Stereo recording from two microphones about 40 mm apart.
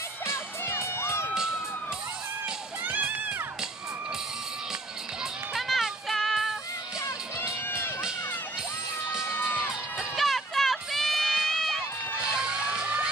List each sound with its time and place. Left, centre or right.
0.7 s crowd: left
1.3 s run: centre
2.8 s crowd: right
5.7 s music: centre
9.4 s music: centre
10.1 s run: centre
12.2 s a sound: centre